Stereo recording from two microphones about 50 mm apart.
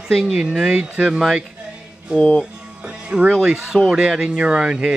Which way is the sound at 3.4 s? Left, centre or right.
Centre.